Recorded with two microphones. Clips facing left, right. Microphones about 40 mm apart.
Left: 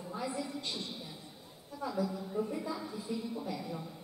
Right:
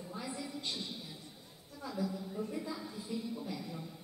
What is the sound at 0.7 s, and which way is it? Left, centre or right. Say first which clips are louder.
A man's voice: left 1 dB; centre.